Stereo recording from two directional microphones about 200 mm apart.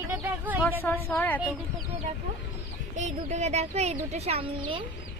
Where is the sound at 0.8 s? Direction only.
10° left (ahead or behind).